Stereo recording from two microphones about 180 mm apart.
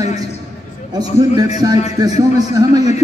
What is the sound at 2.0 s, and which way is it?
Speech, 20° right (ahead or behind).